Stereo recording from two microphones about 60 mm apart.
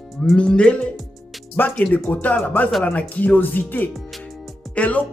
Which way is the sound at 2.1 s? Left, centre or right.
Left.